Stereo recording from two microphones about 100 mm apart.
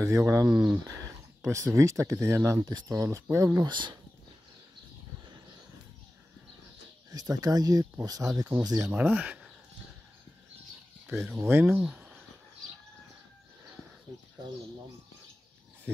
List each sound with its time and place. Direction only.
0.0 s speech: 25° right (ahead or behind)
0.5 s speech: 10° right (ahead or behind)
1.1 s speech: 30° right (ahead or behind)
3.6 s speech: 50° right (ahead or behind)
7.1 s speech: 40° right (ahead or behind)
9.0 s speech: 15° right (ahead or behind)
11.3 s speech: 25° right (ahead or behind)
11.6 s a sound: 5° right (ahead or behind)